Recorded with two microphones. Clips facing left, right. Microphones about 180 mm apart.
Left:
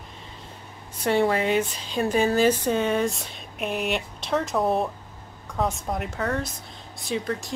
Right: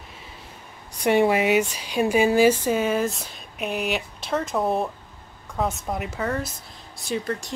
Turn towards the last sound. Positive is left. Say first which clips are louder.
# even
turn(degrees=0)  # may be behind; listen again after turning